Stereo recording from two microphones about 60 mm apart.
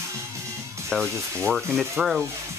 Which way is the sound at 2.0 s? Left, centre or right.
Centre.